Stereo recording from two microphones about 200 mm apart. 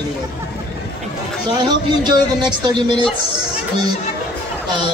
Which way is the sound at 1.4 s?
20° right (ahead or behind).